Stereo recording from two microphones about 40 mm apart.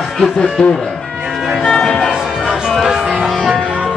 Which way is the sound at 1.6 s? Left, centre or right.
Centre.